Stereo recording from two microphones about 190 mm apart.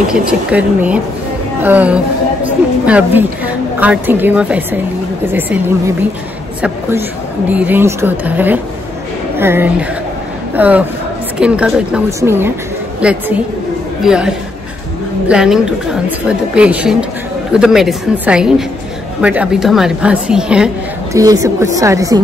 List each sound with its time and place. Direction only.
0.3 s a woman's voice: 5° right (ahead or behind)
21.1 s a woman's voice: 15° right (ahead or behind)